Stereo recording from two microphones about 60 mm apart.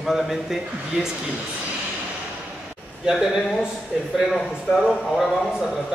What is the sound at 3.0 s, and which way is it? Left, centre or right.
A man's voice, centre.